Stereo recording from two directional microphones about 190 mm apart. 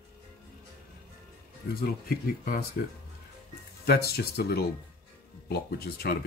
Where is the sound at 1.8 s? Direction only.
50° left (ahead or behind).